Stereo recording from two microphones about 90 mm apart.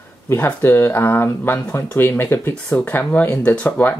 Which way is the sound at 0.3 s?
25° left (ahead or behind).